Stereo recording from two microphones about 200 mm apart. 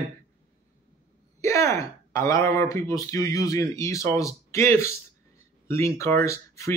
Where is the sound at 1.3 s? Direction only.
15° left (ahead or behind).